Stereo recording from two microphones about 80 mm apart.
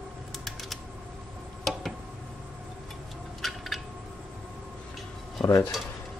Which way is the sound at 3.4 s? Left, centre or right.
Centre.